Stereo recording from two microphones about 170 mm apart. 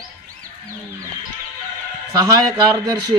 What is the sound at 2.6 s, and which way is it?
Speech, 25° right (ahead or behind).